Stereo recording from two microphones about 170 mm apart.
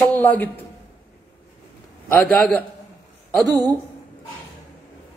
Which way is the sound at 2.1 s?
10° left (ahead or behind).